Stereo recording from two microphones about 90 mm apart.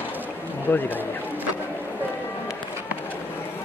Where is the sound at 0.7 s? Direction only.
20° left (ahead or behind).